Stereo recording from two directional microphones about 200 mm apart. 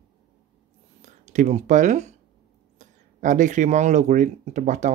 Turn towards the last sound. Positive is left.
turn(degrees=-35)  # may be behind; listen again after turning